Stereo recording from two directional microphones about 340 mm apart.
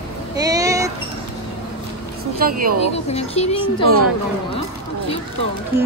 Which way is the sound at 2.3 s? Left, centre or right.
Right.